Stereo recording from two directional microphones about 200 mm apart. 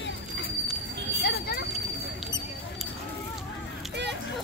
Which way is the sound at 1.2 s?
50° left (ahead or behind).